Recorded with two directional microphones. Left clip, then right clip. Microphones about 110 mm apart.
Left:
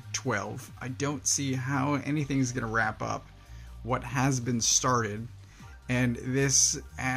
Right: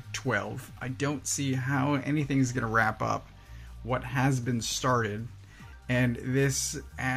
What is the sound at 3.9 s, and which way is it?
Speech, 45° left (ahead or behind).